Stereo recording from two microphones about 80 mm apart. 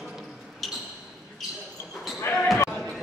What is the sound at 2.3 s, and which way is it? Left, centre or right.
Basketball bounce, left.